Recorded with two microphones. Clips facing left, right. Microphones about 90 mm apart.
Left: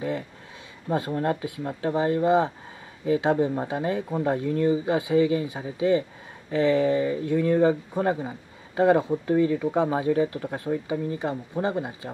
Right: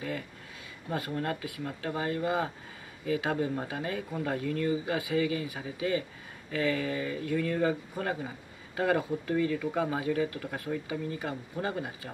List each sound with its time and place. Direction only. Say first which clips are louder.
0.8 s speech: left 7 dB; 25° left (ahead or behind)